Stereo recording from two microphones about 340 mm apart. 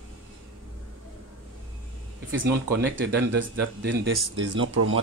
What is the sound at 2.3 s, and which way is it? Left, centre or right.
Speech, right.